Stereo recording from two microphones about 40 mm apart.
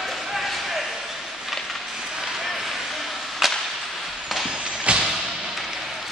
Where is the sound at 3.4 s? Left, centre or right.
Centre.